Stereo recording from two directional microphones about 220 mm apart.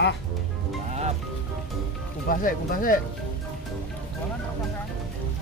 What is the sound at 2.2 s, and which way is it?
Speech, 40° left (ahead or behind).